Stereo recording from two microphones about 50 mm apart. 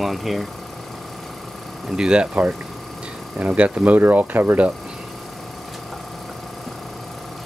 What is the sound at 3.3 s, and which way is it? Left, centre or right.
Speech, right.